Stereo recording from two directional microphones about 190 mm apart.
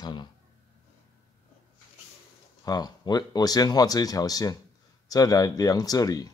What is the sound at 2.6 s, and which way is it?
Speech, 20° left (ahead or behind).